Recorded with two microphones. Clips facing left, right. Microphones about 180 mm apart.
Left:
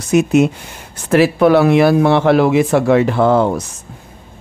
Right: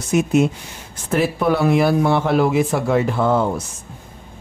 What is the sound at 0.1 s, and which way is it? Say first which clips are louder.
Speech: left 4 dB; 75° left (ahead or behind).